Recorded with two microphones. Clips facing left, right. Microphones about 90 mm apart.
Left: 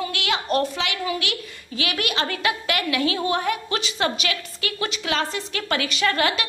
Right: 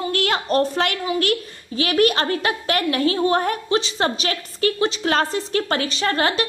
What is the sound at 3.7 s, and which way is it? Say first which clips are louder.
A woman's voice: right 4 dB; 30° right (ahead or behind).